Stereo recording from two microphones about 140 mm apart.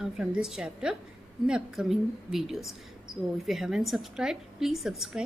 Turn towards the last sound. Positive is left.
turn(degrees=-5)  # may be behind; listen again after turning